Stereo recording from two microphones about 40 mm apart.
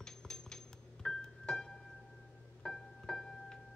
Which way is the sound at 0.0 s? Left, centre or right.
Centre.